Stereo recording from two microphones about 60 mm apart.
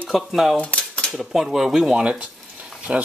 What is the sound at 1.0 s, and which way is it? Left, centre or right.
Speech, centre.